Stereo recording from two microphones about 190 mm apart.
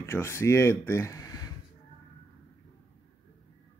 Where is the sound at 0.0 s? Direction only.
15° left (ahead or behind).